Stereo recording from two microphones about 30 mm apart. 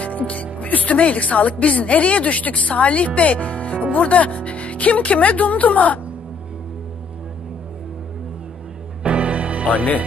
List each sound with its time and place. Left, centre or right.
0.3 s a woman's voice: left
9.0 s music: right